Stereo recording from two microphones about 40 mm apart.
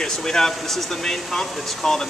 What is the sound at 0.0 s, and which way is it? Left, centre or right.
Speech, centre.